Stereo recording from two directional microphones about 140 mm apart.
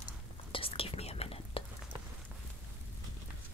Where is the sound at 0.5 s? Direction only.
40° left (ahead or behind).